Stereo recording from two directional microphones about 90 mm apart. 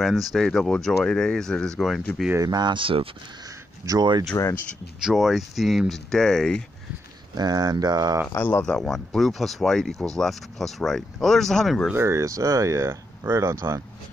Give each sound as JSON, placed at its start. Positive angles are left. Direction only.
{"t": 0.0, "sound": "speech", "side_deg": 0}
{"t": 2.3, "sound": "speech", "side_deg": -45}
{"t": 2.7, "sound": "speech", "side_deg": -80}
{"t": 3.8, "sound": "speech", "side_deg": -45}
{"t": 4.4, "sound": "speech", "side_deg": 45}
{"t": 5.0, "sound": "speech", "side_deg": -5}
{"t": 7.3, "sound": "speech", "side_deg": -50}
{"t": 8.4, "sound": "speech", "side_deg": 20}
{"t": 8.6, "sound": "speech", "side_deg": 5}
{"t": 11.9, "sound": "speech", "side_deg": -30}